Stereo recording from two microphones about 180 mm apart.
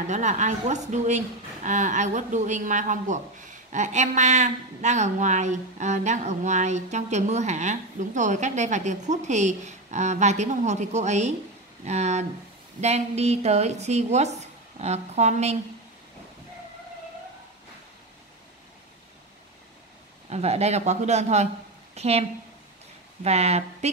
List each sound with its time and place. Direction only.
0.0 s speech: 40° right (ahead or behind)
20.2 s a woman's voice: 35° right (ahead or behind)
23.2 s speech: 35° right (ahead or behind)